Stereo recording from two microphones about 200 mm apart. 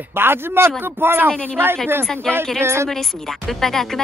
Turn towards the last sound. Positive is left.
turn(degrees=0)  # may be behind; listen again after turning